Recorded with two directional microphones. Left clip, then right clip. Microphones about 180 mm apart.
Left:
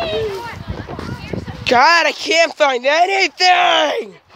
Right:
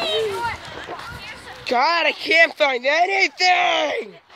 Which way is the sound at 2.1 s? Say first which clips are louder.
Left 1 dB; 20° left (ahead or behind).